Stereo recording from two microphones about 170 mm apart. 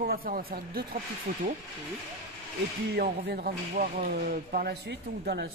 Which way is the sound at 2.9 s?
65° right (ahead or behind).